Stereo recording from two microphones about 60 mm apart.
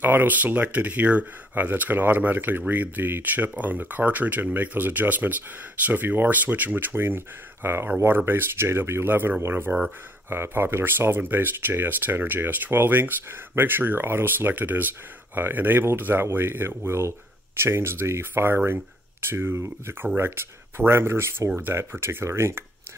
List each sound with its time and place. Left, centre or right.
0.0 s speech: right
21.5 s speech: right